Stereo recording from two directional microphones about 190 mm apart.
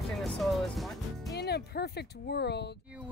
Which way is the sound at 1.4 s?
60° left (ahead or behind).